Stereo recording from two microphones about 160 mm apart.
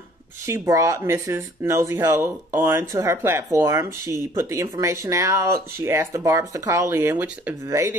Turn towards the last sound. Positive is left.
turn(degrees=-20)  # may be behind; listen again after turning